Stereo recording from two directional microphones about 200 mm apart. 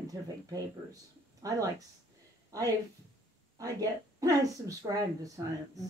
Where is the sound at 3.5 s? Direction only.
15° right (ahead or behind).